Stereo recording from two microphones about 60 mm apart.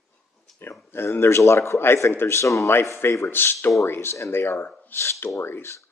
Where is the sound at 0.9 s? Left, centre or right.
Left.